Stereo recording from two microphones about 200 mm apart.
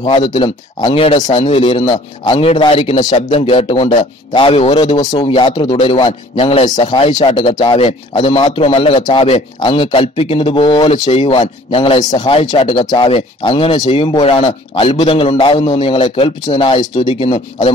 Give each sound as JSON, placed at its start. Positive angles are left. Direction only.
{"t": 0.0, "sound": "speech", "side_deg": 25}